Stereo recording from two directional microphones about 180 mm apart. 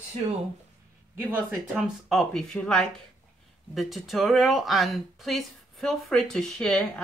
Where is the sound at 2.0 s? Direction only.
Centre (ahead or behind).